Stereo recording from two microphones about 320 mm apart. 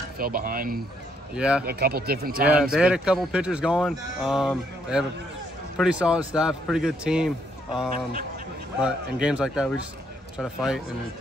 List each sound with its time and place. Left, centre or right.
0.2 s speech: right
1.3 s a man's voice: centre
1.7 s speech: right
2.4 s a man's voice: centre